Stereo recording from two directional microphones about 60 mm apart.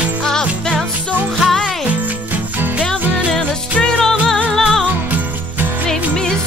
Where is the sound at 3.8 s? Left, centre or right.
Centre.